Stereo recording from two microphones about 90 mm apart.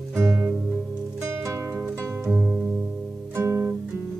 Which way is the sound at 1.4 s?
30° right (ahead or behind).